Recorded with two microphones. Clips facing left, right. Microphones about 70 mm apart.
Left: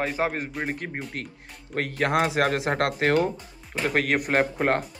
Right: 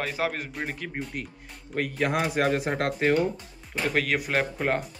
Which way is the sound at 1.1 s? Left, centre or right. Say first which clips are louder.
Even; left.